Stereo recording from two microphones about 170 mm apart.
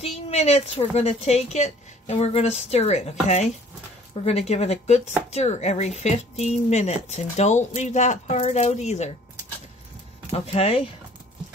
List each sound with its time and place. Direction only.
0.0 s speech: 40° left (ahead or behind)
10.3 s speech: 35° left (ahead or behind)